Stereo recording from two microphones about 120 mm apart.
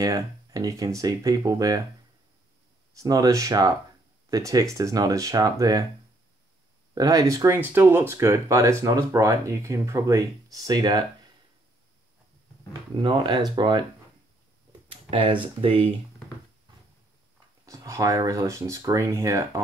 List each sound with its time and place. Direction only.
0.0 s speech: 30° right (ahead or behind)
2.9 s speech: 30° right (ahead or behind)
7.0 s speech: 30° right (ahead or behind)
13.0 s speech: 40° right (ahead or behind)
14.9 s a sound: 50° right (ahead or behind)
15.4 s speech: 45° right (ahead or behind)
17.6 s speech: 25° right (ahead or behind)